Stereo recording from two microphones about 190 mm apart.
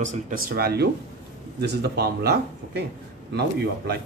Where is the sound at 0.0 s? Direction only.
45° right (ahead or behind).